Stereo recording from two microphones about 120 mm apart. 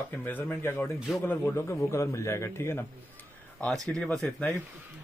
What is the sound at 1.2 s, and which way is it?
A man's voice, 20° left (ahead or behind).